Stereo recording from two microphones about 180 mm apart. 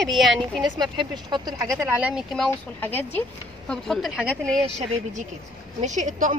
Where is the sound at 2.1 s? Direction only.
Centre (ahead or behind).